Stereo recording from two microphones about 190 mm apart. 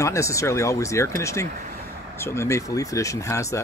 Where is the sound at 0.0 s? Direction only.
15° left (ahead or behind).